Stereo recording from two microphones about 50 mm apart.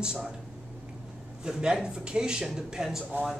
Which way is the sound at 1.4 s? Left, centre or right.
Centre.